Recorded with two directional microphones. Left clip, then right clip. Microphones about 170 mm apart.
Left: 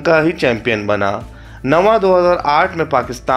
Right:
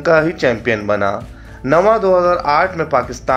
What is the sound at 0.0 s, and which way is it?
Speech, 25° left (ahead or behind).